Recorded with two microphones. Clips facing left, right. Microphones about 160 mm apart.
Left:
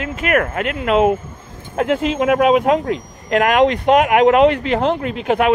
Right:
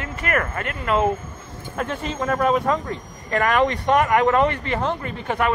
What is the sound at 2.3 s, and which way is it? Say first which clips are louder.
Speech: left 6 dB; 80° left.